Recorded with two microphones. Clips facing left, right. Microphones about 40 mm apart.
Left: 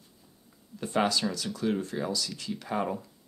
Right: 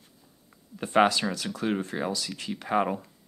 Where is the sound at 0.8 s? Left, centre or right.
Right.